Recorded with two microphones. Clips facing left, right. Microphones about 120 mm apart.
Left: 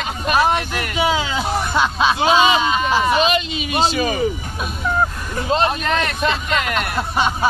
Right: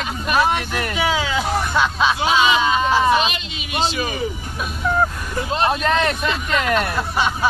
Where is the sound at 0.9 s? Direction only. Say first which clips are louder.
Left 2 dB; 10° left (ahead or behind).